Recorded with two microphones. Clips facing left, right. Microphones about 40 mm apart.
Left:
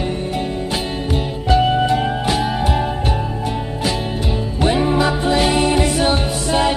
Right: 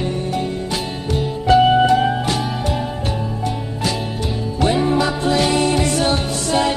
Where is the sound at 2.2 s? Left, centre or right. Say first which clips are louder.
Left 3 dB; centre.